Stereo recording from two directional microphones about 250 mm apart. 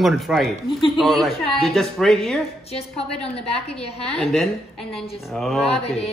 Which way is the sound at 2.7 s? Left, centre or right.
Left.